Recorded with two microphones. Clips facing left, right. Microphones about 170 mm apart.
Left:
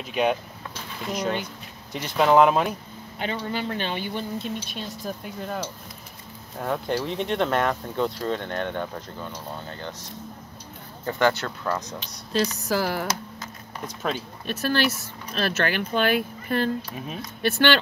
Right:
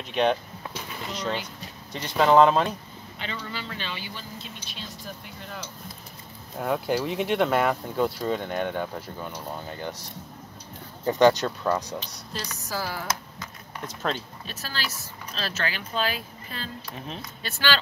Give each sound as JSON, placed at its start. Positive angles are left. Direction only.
{"t": 0.1, "sound": "speech", "side_deg": 5}
{"t": 2.0, "sound": "speech", "side_deg": 10}
{"t": 3.2, "sound": "speech", "side_deg": 45}
{"t": 6.6, "sound": "speech", "side_deg": -5}
{"t": 11.1, "sound": "speech", "side_deg": -20}
{"t": 12.0, "sound": "speech", "side_deg": 70}
{"t": 14.4, "sound": "speech", "side_deg": 60}